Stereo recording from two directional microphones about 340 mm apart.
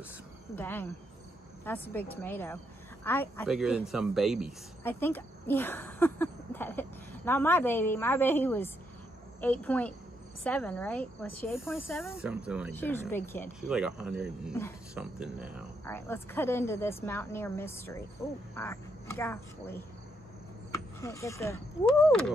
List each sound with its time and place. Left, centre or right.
0.6 s speech: centre
21.0 s speech: centre